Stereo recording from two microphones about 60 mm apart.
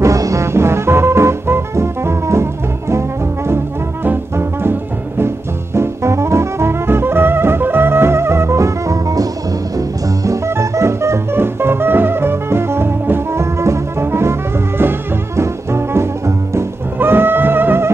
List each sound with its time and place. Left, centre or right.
0.0 s music: right
4.0 s music: right
5.8 s music: right
13.4 s music: right